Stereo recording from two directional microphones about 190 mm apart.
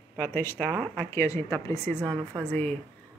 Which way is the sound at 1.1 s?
15° left (ahead or behind).